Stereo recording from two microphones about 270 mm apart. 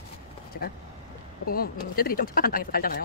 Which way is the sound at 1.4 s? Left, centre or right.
Left.